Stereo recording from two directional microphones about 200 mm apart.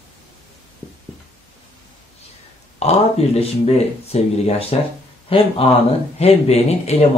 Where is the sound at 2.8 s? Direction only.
30° left (ahead or behind).